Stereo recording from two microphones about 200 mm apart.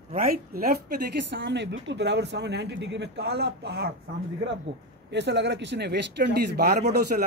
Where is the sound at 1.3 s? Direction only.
60° right (ahead or behind).